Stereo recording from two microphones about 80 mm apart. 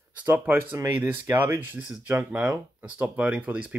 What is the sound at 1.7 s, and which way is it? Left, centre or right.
Speech, centre.